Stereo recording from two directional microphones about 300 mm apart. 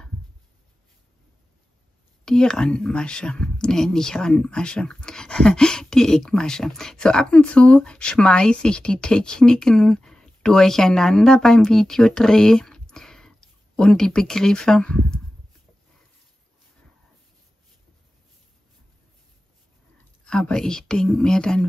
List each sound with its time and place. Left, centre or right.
2.2 s speech: centre
20.2 s speech: centre